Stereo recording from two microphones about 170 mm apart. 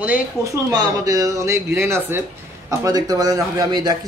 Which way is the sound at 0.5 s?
20° right (ahead or behind).